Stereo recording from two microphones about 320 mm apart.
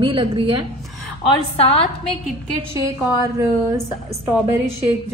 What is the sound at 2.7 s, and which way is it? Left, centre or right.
A woman's voice, centre.